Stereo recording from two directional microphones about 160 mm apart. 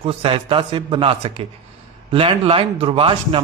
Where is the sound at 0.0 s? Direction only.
35° right (ahead or behind).